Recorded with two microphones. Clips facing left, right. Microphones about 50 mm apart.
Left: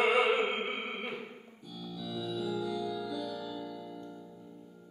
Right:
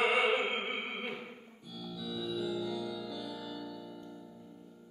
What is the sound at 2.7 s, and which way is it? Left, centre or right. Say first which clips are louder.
Music: left 3 dB; centre.